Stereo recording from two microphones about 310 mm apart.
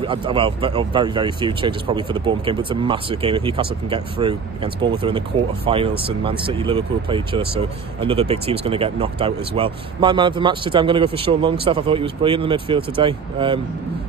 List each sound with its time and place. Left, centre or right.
0.0 s speech: centre